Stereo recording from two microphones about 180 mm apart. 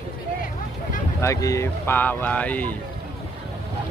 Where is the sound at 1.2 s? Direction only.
15° left (ahead or behind).